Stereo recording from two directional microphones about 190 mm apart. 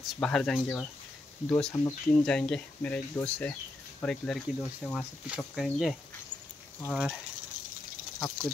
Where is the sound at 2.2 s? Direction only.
5° left (ahead or behind).